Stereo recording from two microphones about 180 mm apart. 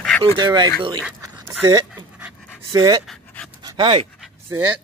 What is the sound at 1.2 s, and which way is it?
Pant, 15° right (ahead or behind).